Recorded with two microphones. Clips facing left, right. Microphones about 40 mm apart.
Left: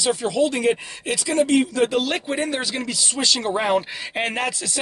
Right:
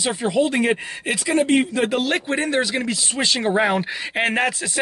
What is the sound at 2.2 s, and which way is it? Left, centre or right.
Speech, centre.